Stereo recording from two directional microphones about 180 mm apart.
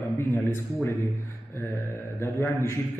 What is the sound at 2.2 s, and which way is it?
Speech, 15° left (ahead or behind).